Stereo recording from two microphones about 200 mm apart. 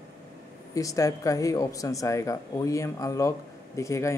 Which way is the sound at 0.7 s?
15° left (ahead or behind).